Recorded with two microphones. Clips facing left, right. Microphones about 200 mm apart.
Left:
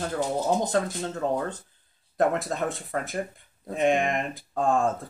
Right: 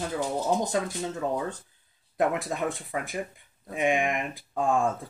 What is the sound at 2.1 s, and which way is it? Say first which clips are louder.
Speech: left 2 dB; 10° right (ahead or behind).